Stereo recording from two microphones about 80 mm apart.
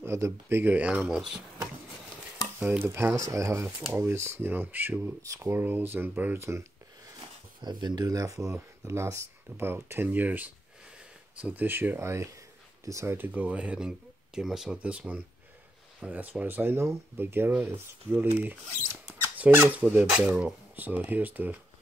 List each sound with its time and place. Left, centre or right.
0.0 s speech: right; by 1.4 s centre
2.8 s speech: right
3.2 s speech: right
5.2 s speech: right
7.2 s speech: right
8.5 s speech: right
12.0 s speech: right
13.3 s speech: centre
20.1 s speech: centre